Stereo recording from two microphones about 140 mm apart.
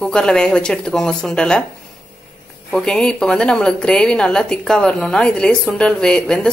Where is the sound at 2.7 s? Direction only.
5° left (ahead or behind).